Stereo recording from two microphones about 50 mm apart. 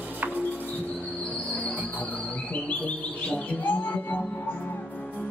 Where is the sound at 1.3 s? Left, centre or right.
Left.